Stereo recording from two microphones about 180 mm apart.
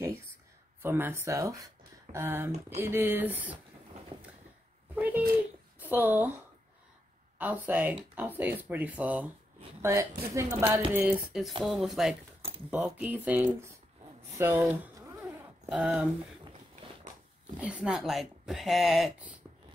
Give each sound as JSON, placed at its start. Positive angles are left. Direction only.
{"t": 0.8, "sound": "speech", "side_deg": -10}
{"t": 4.9, "sound": "a sound", "side_deg": -10}
{"t": 5.8, "sound": "a woman's voice", "side_deg": -10}
{"t": 7.3, "sound": "speech", "side_deg": -10}
{"t": 17.6, "sound": "speech", "side_deg": -5}